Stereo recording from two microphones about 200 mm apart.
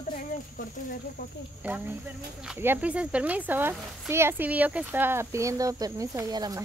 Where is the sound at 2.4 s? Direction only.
10° right (ahead or behind).